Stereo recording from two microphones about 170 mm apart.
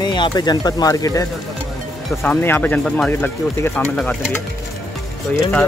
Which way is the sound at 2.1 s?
10° left (ahead or behind).